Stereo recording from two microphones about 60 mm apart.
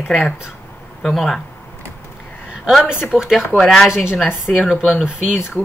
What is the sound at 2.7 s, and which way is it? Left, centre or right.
Speech, centre.